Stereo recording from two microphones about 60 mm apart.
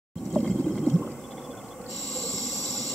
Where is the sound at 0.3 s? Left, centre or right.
Centre.